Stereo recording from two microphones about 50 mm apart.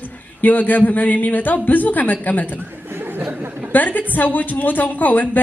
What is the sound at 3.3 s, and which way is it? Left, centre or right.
Chatter, right.